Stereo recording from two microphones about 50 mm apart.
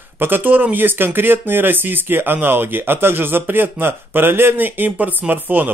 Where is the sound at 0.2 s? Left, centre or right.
Right.